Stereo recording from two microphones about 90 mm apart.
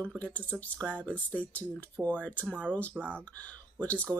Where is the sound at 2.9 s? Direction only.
20° right (ahead or behind).